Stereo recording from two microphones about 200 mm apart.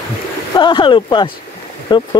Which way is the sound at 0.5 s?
25° left (ahead or behind).